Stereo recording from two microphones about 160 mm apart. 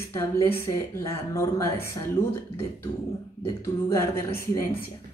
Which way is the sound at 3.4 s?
15° left (ahead or behind).